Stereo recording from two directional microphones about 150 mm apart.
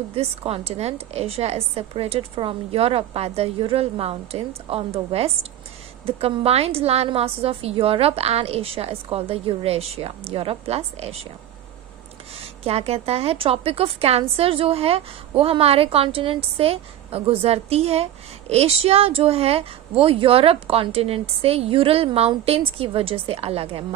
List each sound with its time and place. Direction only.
0.1 s a woman's voice: 40° right (ahead or behind)
12.4 s a woman's voice: 40° right (ahead or behind)